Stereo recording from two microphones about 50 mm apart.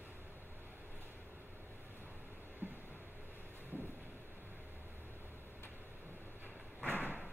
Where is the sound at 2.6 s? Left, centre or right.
Right.